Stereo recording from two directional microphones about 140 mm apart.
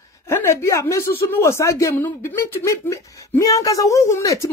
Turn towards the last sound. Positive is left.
turn(degrees=20)  # may be behind; listen again after turning